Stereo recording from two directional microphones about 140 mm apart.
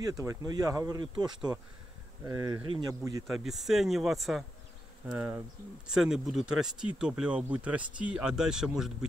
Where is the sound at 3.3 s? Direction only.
Centre (ahead or behind).